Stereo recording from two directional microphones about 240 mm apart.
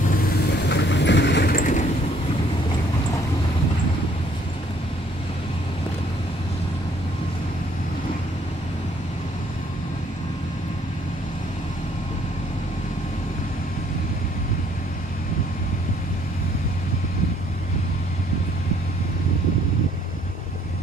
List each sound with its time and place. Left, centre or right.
0.1 s vehicle: left